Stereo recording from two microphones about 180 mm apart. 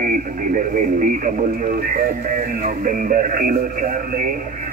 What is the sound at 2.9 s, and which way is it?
Speech, 50° right (ahead or behind).